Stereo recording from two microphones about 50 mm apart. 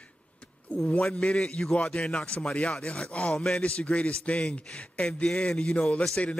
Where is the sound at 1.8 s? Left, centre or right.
Left.